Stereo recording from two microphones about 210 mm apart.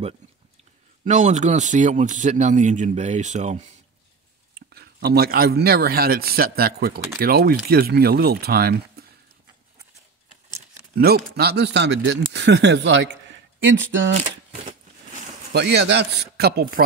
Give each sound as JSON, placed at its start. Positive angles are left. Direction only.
{"t": 1.0, "sound": "a man's voice", "side_deg": -35}
{"t": 4.6, "sound": "speech", "side_deg": -50}
{"t": 11.0, "sound": "speech", "side_deg": -45}
{"t": 15.5, "sound": "speech", "side_deg": -55}